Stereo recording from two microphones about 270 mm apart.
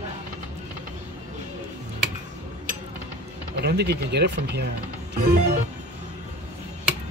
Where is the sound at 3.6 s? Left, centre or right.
Right.